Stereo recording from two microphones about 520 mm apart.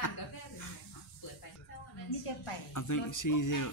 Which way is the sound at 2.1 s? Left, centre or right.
Left.